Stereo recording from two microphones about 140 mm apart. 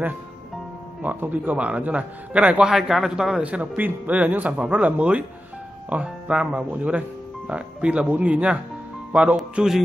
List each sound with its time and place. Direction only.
1.0 s a man's voice: 10° right (ahead or behind)